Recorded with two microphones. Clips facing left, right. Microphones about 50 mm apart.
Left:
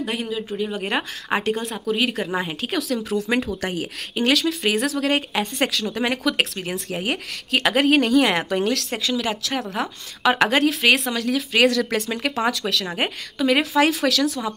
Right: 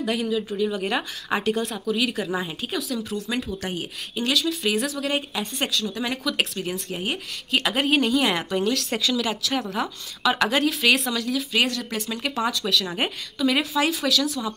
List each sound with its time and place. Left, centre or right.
0.0 s a woman's voice: left
2.6 s speech: left
3.1 s speech: left
6.0 s a woman's voice: left
8.9 s speech: left
9.2 s a woman's voice: left
11.2 s speech: left
12.1 s a woman's voice: left